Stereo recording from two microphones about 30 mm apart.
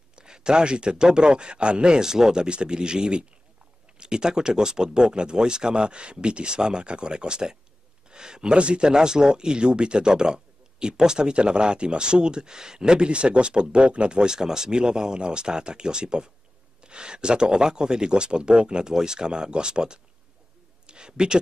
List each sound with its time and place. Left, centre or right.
0.1 s a man's voice: right
2.0 s a man's voice: centre